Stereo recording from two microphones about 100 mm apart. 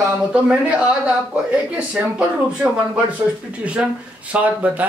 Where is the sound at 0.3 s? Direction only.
10° right (ahead or behind).